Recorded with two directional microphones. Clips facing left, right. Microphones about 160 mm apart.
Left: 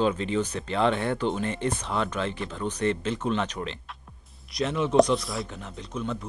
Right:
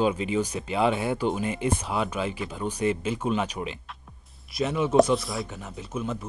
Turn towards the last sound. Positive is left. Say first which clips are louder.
# right 1 dB
turn(degrees=-5)  # may be behind; listen again after turning